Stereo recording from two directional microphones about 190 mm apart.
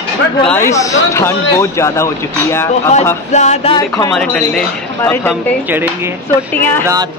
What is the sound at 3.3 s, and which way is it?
Music, 35° left (ahead or behind).